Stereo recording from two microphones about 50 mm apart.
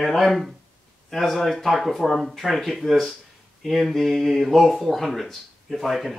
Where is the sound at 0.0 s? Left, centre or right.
Centre.